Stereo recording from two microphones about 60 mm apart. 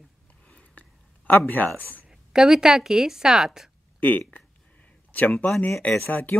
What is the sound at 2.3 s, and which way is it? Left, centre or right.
A woman's voice, centre.